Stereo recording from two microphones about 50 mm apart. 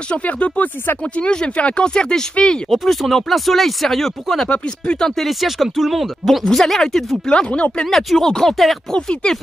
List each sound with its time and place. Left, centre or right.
0.1 s speech: left
1.0 s speech: centre
2.7 s speech: centre
4.5 s speech: centre
7.2 s speech: centre
7.8 s speech: centre
8.9 s speech: centre